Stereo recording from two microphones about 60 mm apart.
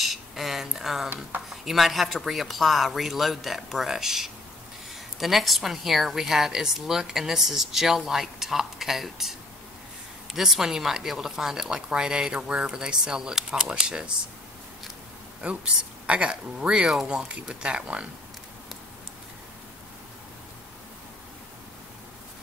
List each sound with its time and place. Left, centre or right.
0.0 s a sound: centre
1.5 s a woman's voice: centre
10.3 s speech: centre
15.4 s speech: centre